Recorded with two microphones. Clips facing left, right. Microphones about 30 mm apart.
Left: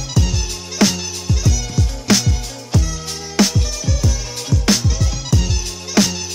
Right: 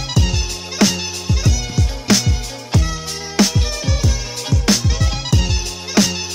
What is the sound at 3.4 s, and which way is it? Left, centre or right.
Music, centre.